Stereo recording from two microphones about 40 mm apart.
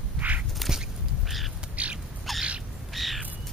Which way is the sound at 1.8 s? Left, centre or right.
Right.